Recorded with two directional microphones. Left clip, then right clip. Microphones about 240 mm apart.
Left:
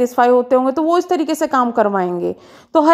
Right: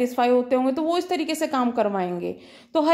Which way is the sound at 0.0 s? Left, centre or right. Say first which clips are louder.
Left 8 dB; left.